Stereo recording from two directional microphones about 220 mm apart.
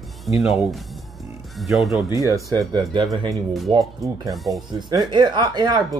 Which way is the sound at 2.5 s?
20° right (ahead or behind).